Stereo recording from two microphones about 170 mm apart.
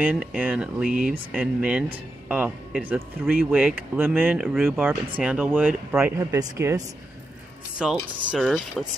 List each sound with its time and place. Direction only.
0.0 s speech: 5° right (ahead or behind)
0.8 s speech: 55° right (ahead or behind)
1.3 s speech: 5° right (ahead or behind)
7.8 s speech: 5° right (ahead or behind)